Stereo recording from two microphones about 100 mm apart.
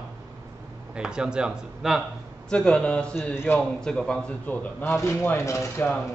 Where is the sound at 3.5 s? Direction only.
5° left (ahead or behind).